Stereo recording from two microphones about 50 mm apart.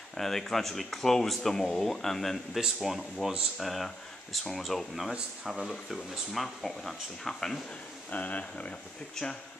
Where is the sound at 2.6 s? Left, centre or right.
Centre.